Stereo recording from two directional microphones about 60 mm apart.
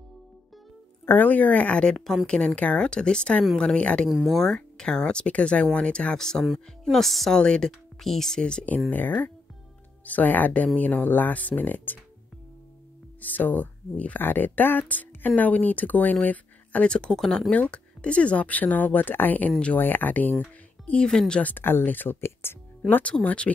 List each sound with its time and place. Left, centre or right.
1.0 s speech: left
1.9 s speech: centre
4.1 s speech: centre
4.4 s speech: centre
7.3 s speech: centre
8.9 s speech: left
13.2 s speech: left; by 17.5 s centre
17.5 s speech: left
21.4 s speech: left
23.2 s speech: centre